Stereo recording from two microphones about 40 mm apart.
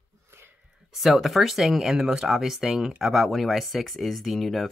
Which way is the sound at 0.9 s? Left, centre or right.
Centre.